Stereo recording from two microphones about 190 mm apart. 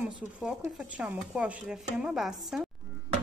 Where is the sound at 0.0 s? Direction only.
5° right (ahead or behind).